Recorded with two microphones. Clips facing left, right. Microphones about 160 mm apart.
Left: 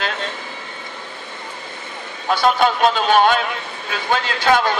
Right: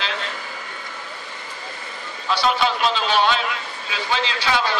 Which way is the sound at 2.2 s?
50° left (ahead or behind).